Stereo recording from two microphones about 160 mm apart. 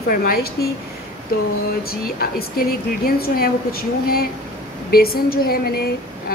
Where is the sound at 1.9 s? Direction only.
70° left (ahead or behind).